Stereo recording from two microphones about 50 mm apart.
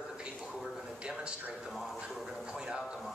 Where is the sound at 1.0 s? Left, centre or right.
Centre.